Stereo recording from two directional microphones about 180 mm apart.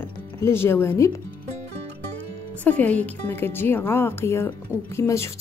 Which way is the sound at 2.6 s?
10° left (ahead or behind).